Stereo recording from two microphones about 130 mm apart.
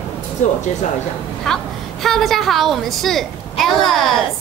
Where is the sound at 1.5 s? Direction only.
5° left (ahead or behind).